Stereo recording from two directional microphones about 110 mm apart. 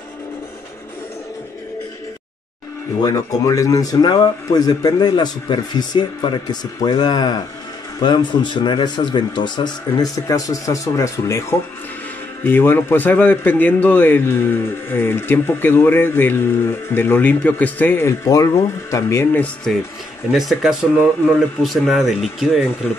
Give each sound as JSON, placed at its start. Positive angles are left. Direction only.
{"t": 3.0, "sound": "a man's voice", "side_deg": 35}
{"t": 19.4, "sound": "speech", "side_deg": 5}